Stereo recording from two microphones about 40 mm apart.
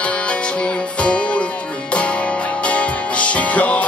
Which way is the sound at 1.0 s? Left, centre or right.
Left.